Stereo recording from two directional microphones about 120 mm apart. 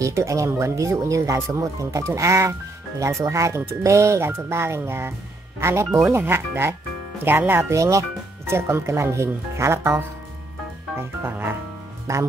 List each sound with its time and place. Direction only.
0.0 s speech: 25° right (ahead or behind)
11.0 s music: 15° right (ahead or behind)
12.1 s speech: 25° right (ahead or behind)